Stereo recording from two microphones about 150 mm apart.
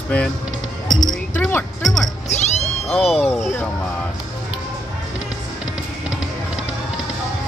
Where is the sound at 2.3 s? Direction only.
50° left (ahead or behind).